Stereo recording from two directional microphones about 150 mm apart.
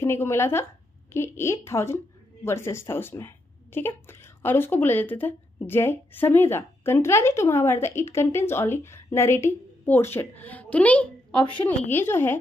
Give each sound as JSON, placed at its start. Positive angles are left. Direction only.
{"t": 0.0, "sound": "speech", "side_deg": 15}
{"t": 11.3, "sound": "a woman's voice", "side_deg": 35}
{"t": 11.9, "sound": "speech", "side_deg": 15}